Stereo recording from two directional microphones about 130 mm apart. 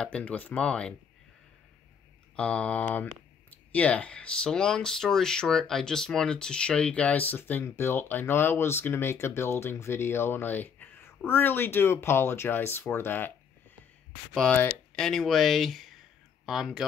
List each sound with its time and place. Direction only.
0.0 s speech: 10° left (ahead or behind)
2.3 s speech: 10° left (ahead or behind)
14.3 s speech: 5° left (ahead or behind)